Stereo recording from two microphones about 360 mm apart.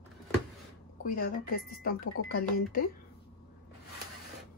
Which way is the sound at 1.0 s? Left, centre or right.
Left.